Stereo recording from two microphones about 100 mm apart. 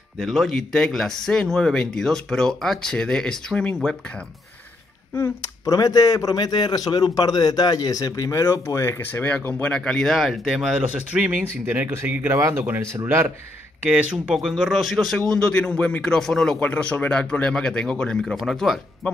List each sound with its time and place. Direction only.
0.2 s speech: centre (ahead or behind)
5.1 s speech: 30° left (ahead or behind); by 10.7 s centre (ahead or behind)
11.1 s speech: 15° right (ahead or behind)
13.8 s a man's voice: 10° right (ahead or behind)